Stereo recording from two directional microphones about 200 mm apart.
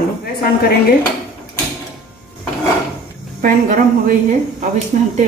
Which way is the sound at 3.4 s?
45° right (ahead or behind).